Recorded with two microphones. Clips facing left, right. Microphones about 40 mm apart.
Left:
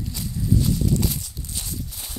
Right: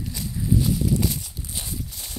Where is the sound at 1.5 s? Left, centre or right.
Centre.